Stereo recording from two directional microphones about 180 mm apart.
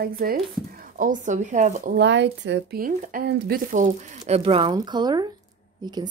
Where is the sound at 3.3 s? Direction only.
65° right (ahead or behind).